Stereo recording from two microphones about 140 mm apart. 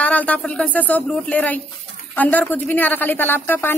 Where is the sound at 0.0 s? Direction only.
10° left (ahead or behind).